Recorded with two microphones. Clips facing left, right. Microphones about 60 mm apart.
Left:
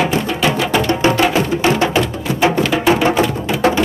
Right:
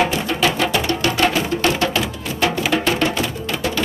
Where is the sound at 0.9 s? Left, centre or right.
Left.